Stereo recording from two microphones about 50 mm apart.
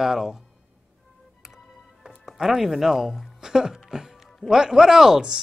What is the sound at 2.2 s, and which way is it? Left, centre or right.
Speech, centre.